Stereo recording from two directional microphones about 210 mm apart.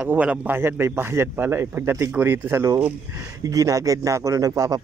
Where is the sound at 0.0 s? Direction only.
5° right (ahead or behind).